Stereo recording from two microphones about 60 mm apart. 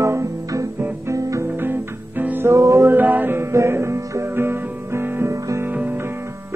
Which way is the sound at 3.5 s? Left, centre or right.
Right.